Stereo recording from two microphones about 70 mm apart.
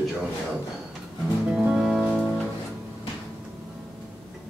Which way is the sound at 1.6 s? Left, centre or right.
Centre.